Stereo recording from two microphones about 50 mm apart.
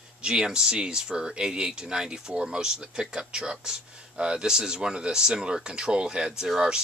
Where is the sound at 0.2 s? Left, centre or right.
Centre.